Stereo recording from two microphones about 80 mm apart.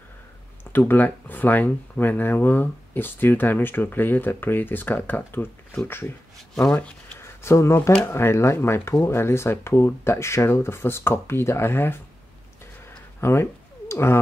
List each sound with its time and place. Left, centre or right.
0.7 s speech: left
6.6 s speech: centre
7.2 s a sound: left
8.0 s speech: left
13.2 s cat: left